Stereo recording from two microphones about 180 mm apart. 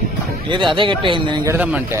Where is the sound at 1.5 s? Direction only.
10° right (ahead or behind).